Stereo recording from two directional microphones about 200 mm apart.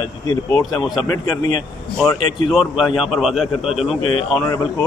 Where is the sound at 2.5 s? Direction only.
Centre (ahead or behind).